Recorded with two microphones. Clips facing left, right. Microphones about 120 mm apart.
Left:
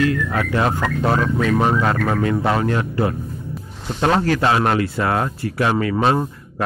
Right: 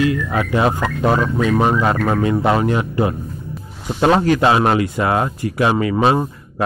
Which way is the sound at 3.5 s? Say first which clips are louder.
Right 2 dB; 5° right (ahead or behind).